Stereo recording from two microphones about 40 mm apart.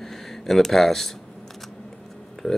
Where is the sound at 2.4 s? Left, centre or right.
Centre.